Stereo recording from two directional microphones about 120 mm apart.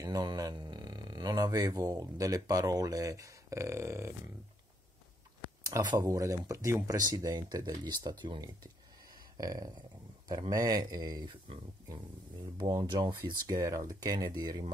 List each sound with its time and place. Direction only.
0.0 s speech: 35° right (ahead or behind)
5.6 s speech: 35° right (ahead or behind)
13.6 s speech: 25° right (ahead or behind)